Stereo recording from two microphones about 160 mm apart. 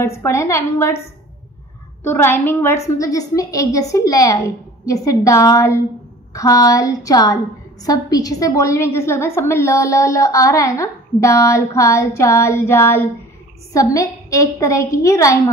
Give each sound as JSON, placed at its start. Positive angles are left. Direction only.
{"t": 0.0, "sound": "a woman's voice", "side_deg": 15}
{"t": 2.0, "sound": "a woman's voice", "side_deg": 10}